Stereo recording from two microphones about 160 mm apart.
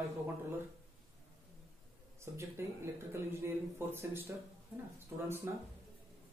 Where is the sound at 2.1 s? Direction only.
15° right (ahead or behind).